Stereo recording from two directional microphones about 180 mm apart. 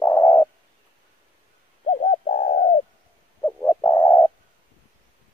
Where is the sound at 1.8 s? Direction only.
40° left (ahead or behind).